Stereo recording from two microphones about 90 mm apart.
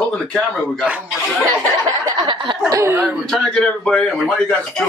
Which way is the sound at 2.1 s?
60° right (ahead or behind).